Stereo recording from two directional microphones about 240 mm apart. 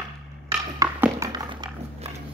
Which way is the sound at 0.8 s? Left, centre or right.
Centre.